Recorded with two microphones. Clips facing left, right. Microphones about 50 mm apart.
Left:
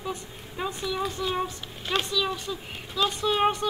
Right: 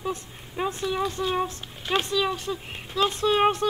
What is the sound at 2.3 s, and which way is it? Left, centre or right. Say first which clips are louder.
Speech: right 2 dB; right.